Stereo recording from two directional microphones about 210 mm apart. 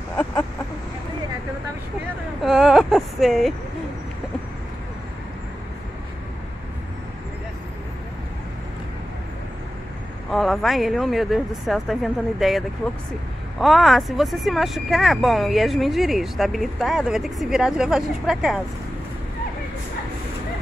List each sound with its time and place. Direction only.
0.2 s a sound: 15° left (ahead or behind)
2.4 s speech: centre (ahead or behind)
10.3 s speech: centre (ahead or behind)